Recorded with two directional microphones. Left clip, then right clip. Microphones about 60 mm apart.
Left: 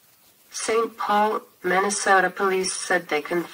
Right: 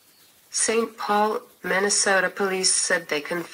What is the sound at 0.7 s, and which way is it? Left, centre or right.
Speech, right.